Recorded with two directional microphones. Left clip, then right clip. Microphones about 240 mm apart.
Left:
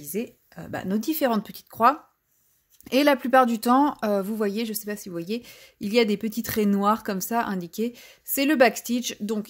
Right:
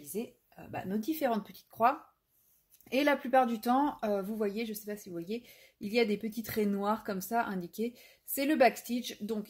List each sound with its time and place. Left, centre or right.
0.1 s speech: left